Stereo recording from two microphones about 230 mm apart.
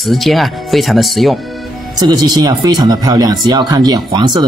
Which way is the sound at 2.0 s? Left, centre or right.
Centre.